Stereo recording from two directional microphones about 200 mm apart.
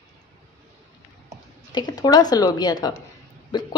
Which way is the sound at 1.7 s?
20° left (ahead or behind).